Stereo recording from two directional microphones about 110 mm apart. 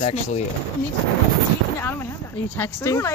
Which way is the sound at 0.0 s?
80° left.